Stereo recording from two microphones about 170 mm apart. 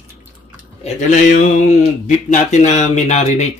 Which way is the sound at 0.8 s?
45° left (ahead or behind).